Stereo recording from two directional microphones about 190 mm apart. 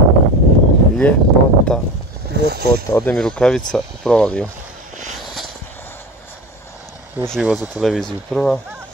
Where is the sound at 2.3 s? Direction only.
60° right (ahead or behind).